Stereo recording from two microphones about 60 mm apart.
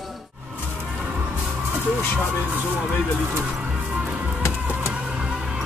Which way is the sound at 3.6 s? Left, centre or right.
Centre.